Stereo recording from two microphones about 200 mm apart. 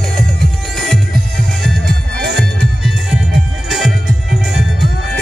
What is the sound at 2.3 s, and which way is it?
Music, centre (ahead or behind).